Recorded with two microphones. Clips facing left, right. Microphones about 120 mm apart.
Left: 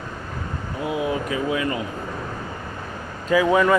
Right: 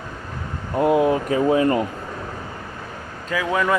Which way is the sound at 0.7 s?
50° right (ahead or behind).